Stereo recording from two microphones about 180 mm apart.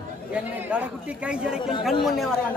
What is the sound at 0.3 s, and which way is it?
A man's voice, 10° right (ahead or behind).